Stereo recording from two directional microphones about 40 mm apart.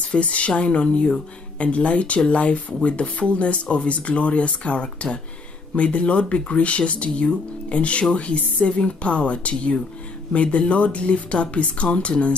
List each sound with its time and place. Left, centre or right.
0.1 s a woman's voice: left
1.6 s a woman's voice: left